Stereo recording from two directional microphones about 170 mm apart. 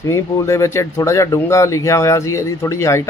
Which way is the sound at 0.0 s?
15° left (ahead or behind).